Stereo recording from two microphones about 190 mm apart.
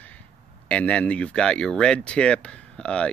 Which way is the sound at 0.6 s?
5° left (ahead or behind).